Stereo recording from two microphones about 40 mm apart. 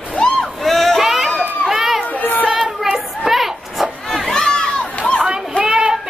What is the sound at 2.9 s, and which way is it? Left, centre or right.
Children playing, centre.